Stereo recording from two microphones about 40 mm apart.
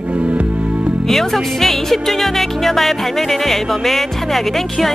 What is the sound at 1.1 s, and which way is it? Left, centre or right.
Speech, centre.